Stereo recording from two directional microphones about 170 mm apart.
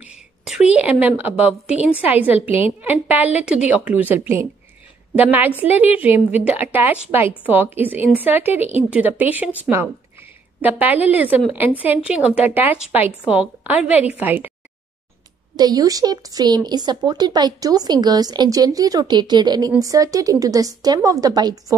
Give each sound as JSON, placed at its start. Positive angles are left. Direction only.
{"t": 0.0, "sound": "a sound", "side_deg": -5}
{"t": 0.7, "sound": "a woman's voice", "side_deg": -10}
{"t": 15.5, "sound": "speech", "side_deg": -25}